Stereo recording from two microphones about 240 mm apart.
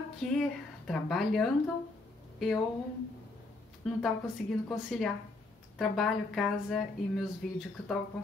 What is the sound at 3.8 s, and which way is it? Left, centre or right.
A woman's voice, centre.